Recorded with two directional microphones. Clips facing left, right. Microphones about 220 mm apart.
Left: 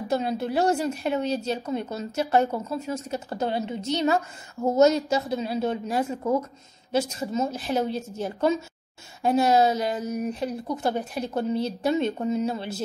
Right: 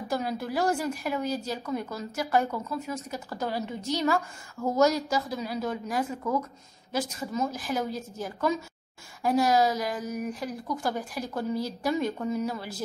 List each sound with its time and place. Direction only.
0.1 s a woman's voice: 25° left (ahead or behind)